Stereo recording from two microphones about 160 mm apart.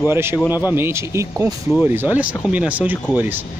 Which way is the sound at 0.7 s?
15° right (ahead or behind).